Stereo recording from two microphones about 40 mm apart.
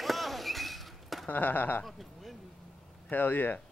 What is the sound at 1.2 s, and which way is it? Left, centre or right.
Speech, left.